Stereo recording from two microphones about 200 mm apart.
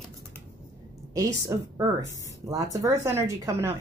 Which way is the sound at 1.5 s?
15° right (ahead or behind).